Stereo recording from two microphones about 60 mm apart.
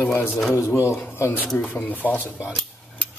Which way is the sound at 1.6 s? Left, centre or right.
Left.